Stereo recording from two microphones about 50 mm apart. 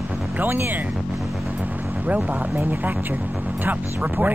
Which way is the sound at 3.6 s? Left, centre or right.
Right.